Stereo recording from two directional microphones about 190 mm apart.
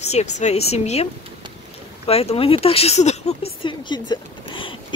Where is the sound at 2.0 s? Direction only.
30° left (ahead or behind).